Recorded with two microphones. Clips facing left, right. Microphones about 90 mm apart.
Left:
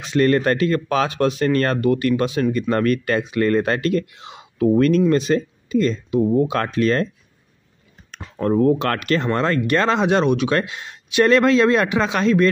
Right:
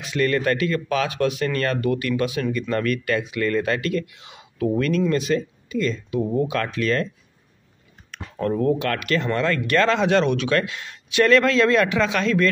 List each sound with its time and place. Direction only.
0.0 s speech: 35° left (ahead or behind)
8.1 s speech: 30° left (ahead or behind)